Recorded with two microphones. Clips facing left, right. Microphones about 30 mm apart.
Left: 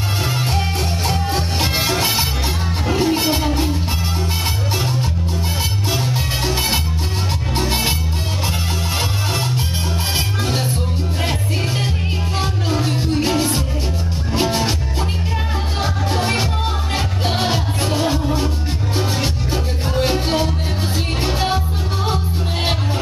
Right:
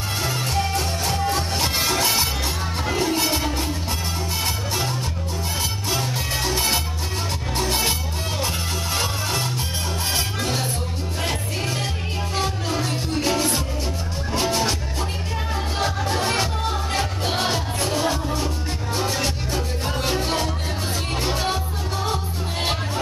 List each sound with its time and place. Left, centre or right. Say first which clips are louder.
0.2 s music: left 1 dB; centre
5.9 s music: left 3 dB; centre
10.1 s music: left 3 dB; centre
12.4 s music: left 3 dB; centre